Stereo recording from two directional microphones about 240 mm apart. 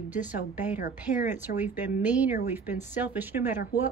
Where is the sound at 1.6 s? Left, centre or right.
Centre.